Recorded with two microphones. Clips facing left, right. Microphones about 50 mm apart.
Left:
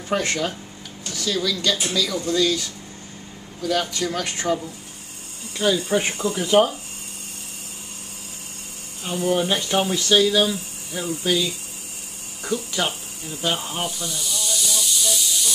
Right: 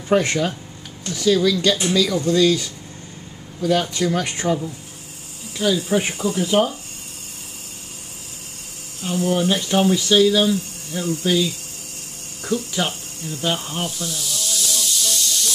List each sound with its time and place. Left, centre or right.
0.1 s speech: centre
1.0 s speech: right
3.9 s speech: right
5.6 s speech: centre
9.0 s speech: centre
12.4 s snake: centre